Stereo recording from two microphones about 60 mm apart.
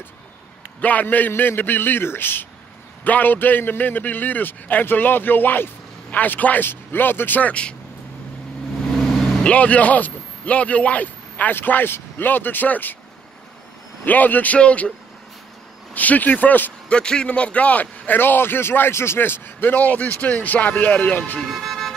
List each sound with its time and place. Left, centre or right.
0.7 s a man's voice: left
8.9 s vehicle: centre
9.4 s a man's voice: left
14.0 s a man's voice: left
15.9 s a man's voice: left
16.9 s a man's voice: centre
21.5 s vehicle: centre